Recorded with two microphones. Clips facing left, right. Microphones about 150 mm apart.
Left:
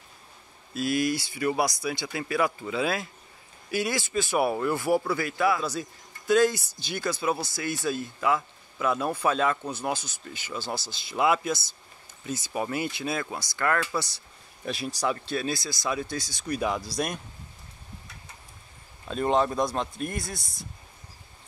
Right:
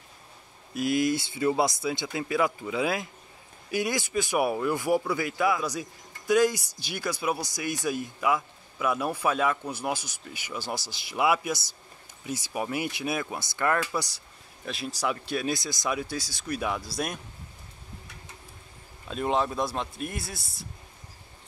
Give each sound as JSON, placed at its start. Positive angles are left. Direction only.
{"t": 0.7, "sound": "a man's voice", "side_deg": -20}
{"t": 14.6, "sound": "speech", "side_deg": 0}
{"t": 19.0, "sound": "speech", "side_deg": -5}